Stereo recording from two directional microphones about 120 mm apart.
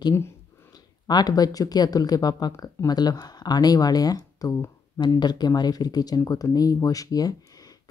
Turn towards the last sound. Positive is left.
turn(degrees=30)  # may be behind; listen again after turning